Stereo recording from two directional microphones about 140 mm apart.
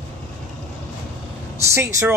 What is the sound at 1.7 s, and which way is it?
Speech, 20° right (ahead or behind).